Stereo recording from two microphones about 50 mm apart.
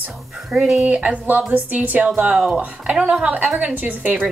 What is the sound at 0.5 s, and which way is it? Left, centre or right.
A woman's voice, right.